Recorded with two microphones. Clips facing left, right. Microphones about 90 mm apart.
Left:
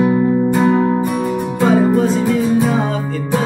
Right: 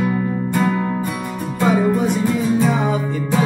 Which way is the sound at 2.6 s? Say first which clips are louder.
Left 2 dB; 15° left (ahead or behind).